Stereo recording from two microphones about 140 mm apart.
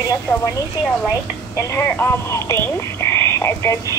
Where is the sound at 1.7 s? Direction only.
20° left (ahead or behind).